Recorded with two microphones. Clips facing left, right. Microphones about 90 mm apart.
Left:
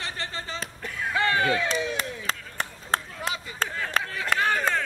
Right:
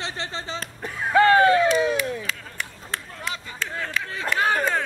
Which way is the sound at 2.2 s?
35° left (ahead or behind).